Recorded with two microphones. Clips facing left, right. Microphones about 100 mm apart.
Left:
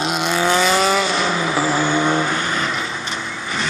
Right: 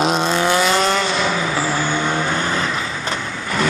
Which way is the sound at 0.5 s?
Centre (ahead or behind).